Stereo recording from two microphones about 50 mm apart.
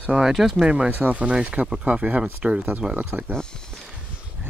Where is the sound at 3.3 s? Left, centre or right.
Centre.